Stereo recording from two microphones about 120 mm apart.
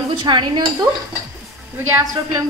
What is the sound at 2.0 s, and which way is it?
Speech, 30° right (ahead or behind).